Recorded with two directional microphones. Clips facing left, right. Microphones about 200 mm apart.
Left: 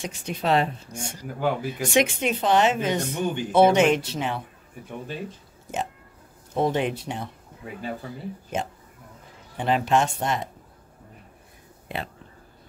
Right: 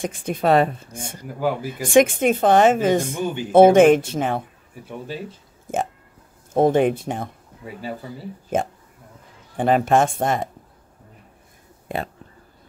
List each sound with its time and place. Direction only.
0.0 s speech: 50° right (ahead or behind)
1.2 s speech: 5° right (ahead or behind)
1.7 s speech: 50° right (ahead or behind)
4.8 s speech: 5° right (ahead or behind)
5.7 s speech: 50° right (ahead or behind)
8.5 s speech: 50° right (ahead or behind)
11.9 s speech: 45° right (ahead or behind)